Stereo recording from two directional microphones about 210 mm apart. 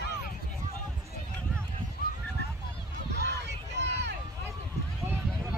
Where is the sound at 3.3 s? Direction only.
55° right (ahead or behind).